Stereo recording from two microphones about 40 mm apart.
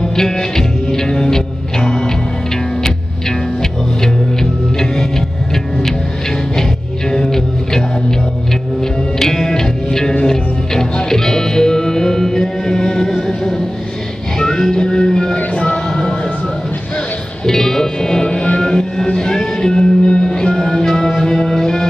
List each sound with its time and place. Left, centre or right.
0.0 s music: centre
7.1 s music: centre
9.2 s music: centre
14.7 s music: centre
15.3 s music: left
17.5 s music: centre
18.3 s music: left
18.6 s music: centre
20.5 s music: centre